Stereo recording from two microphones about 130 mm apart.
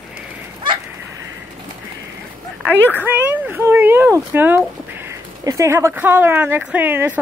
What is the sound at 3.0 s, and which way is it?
Speech, 15° right (ahead or behind).